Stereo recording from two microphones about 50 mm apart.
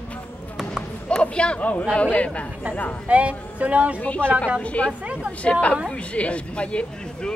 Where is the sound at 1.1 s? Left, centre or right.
Left.